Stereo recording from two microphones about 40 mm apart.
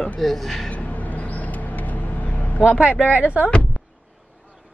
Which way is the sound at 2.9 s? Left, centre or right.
Right.